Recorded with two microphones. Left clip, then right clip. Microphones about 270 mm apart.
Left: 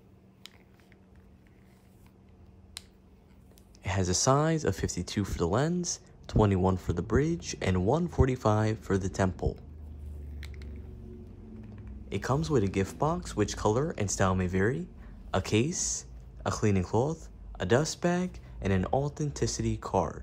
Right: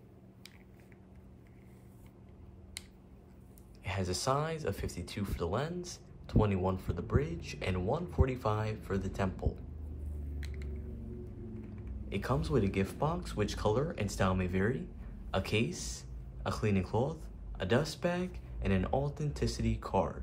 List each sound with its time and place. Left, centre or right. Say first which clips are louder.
3.8 s speech: left 7 dB; left
12.1 s speech: left 4 dB; left